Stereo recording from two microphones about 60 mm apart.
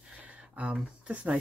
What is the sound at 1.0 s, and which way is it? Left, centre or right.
Speech, right.